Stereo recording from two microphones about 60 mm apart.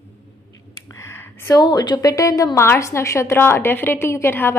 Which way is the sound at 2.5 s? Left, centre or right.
Left.